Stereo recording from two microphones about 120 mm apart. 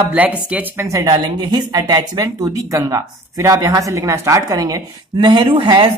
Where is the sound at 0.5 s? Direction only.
15° right (ahead or behind).